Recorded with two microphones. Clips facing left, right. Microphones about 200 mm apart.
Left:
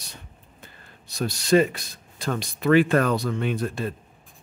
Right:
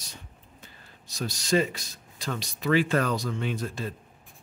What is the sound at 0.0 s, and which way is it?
Speech, 60° left (ahead or behind).